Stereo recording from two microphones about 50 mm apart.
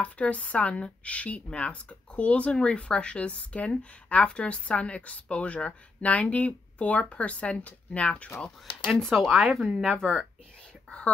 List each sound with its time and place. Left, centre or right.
0.0 s speech: left
8.9 s speech: centre